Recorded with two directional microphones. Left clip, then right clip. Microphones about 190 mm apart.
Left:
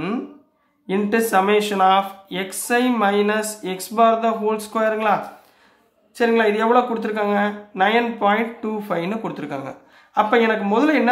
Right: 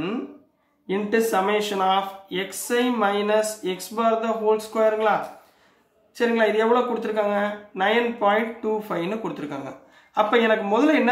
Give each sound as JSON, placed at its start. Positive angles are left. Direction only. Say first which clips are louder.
{"t": 0.8, "sound": "speech", "louder": "left 2 dB", "side_deg": 35}
{"t": 6.1, "sound": "speech", "louder": "left 3 dB", "side_deg": 30}